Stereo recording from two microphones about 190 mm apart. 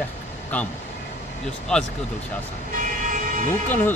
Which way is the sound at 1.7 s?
5° left (ahead or behind).